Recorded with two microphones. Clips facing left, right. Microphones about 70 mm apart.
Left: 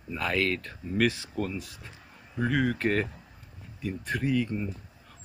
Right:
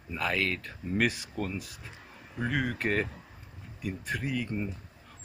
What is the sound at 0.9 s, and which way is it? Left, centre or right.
Speech, right.